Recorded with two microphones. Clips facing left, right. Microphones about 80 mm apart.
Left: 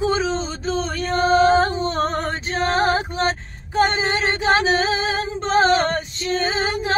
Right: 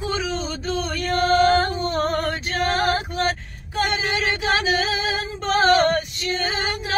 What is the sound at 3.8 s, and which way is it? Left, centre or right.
Singing, left.